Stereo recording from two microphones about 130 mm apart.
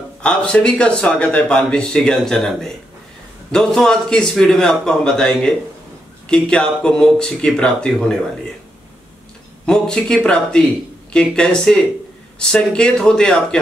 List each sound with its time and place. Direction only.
0.2 s a man's voice: 5° left (ahead or behind)
9.7 s a man's voice: 5° left (ahead or behind)